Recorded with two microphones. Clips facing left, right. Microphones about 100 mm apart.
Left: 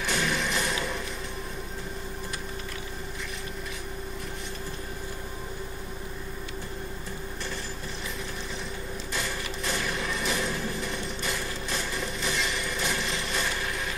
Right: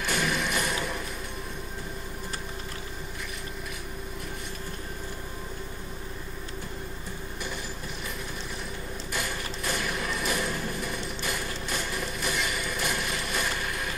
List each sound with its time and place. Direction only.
0.0 s music: 5° right (ahead or behind)
9.1 s mechanisms: 5° right (ahead or behind)